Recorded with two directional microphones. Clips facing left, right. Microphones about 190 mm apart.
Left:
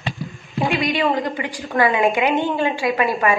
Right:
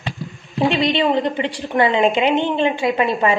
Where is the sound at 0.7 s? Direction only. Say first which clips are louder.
Right 2 dB; 25° right (ahead or behind).